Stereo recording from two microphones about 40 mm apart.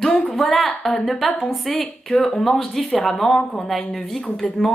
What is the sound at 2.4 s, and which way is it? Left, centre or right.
A woman's voice, centre.